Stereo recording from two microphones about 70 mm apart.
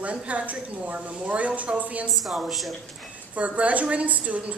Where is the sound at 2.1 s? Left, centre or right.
Centre.